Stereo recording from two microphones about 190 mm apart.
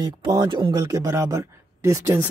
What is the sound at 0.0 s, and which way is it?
Speech, 25° right (ahead or behind).